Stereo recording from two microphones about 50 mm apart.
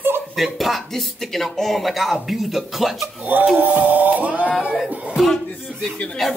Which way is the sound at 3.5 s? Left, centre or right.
Right.